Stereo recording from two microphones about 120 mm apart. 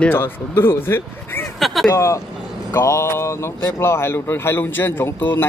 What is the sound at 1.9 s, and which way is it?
A man's voice, 25° left (ahead or behind).